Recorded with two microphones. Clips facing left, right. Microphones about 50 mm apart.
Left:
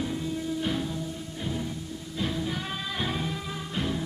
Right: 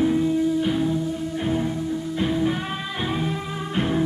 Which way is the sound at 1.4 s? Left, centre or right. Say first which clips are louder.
Right 8 dB; right.